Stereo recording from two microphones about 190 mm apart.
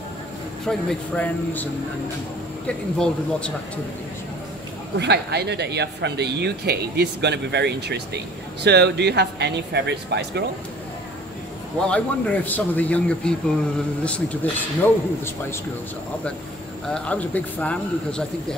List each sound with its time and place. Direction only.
0.7 s speech: 5° left (ahead or behind)
3.0 s a man's voice: 5° left (ahead or behind)
4.9 s speech: 60° right (ahead or behind)
11.9 s speech: 10° left (ahead or behind)
16.9 s speech: 5° left (ahead or behind)